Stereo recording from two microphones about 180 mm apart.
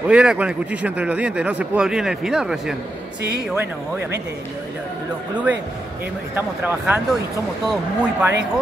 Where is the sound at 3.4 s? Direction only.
10° right (ahead or behind).